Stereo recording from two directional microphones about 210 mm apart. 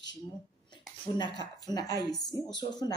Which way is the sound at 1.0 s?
20° left (ahead or behind).